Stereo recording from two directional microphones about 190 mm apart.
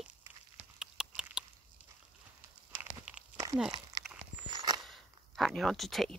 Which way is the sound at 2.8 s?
15° right (ahead or behind).